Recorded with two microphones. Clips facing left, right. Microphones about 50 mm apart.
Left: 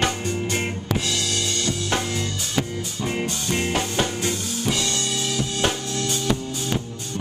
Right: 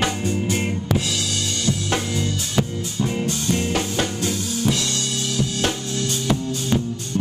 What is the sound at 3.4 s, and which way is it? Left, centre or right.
Music, centre.